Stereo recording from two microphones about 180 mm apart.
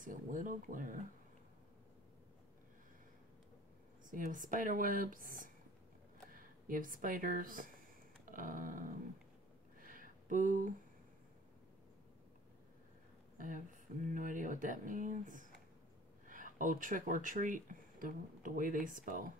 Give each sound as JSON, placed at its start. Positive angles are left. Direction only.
{"t": 0.0, "sound": "speech", "side_deg": -45}
{"t": 4.1, "sound": "speech", "side_deg": -45}
{"t": 9.8, "sound": "a sound", "side_deg": -50}
{"t": 14.1, "sound": "speech", "side_deg": -45}